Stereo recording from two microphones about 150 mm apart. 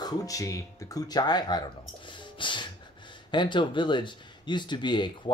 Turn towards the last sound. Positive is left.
turn(degrees=30)  # may be behind; listen again after turning